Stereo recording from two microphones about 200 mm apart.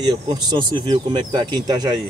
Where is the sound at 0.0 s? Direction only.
20° right (ahead or behind).